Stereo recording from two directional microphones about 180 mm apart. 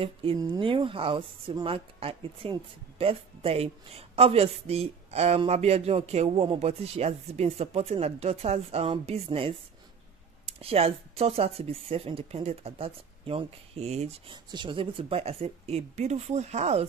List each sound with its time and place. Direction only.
0.0 s speech: 30° right (ahead or behind)